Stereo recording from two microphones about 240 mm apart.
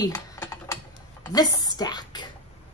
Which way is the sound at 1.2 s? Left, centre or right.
Centre.